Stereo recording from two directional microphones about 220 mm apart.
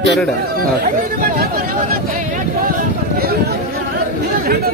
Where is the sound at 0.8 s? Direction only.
40° right (ahead or behind).